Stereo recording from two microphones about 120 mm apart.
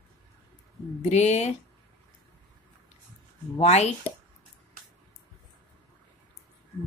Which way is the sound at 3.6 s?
65° left (ahead or behind).